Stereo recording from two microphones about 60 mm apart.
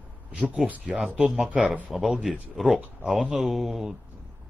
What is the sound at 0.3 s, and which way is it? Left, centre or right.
A man's voice, right.